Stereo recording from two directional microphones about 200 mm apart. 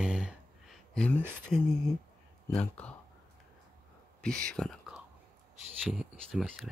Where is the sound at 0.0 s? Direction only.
5° right (ahead or behind).